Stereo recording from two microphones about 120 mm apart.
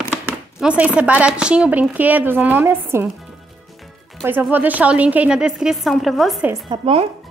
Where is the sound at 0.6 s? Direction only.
10° right (ahead or behind).